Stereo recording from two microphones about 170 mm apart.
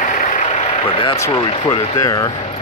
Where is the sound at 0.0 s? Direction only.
45° left (ahead or behind).